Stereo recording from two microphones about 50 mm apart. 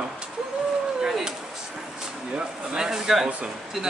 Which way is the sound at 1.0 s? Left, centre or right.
Centre.